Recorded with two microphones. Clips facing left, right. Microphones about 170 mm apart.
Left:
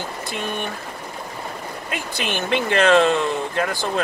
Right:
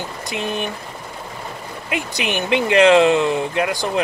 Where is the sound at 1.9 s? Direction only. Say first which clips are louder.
Right 4 dB; 15° right (ahead or behind).